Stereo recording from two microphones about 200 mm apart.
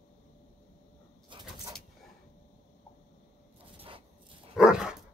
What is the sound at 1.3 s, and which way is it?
Bird, 25° right (ahead or behind).